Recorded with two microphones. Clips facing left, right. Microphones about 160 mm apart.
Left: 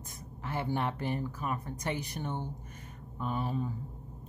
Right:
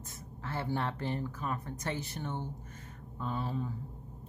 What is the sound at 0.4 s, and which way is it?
Speech, 15° left (ahead or behind).